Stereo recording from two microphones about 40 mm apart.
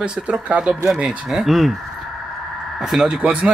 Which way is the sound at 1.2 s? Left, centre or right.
Centre.